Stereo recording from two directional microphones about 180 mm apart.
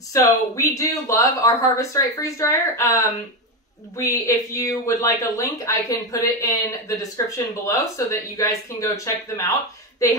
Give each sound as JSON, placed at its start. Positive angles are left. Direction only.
{"t": 0.1, "sound": "speech", "side_deg": 20}